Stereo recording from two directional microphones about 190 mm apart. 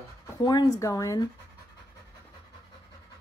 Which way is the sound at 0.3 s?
20° left (ahead or behind).